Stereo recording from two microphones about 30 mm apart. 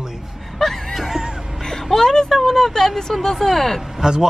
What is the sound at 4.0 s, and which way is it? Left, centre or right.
Speech, centre.